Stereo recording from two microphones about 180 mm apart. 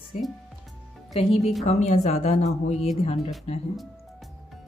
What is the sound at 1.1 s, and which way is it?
Speech, 35° left (ahead or behind).